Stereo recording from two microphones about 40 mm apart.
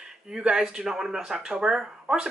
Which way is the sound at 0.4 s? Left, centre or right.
Right.